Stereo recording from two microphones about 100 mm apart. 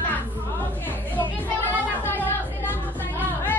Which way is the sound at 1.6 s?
20° left (ahead or behind).